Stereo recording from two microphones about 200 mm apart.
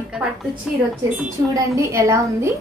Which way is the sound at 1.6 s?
15° right (ahead or behind).